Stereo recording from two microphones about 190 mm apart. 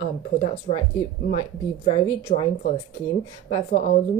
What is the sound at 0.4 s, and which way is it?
A woman's voice, 35° left (ahead or behind).